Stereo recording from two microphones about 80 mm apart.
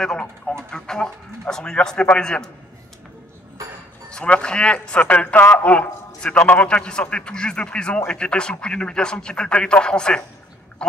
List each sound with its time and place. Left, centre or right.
0.0 s a man's voice: centre
4.1 s a man's voice: centre
10.8 s duck: centre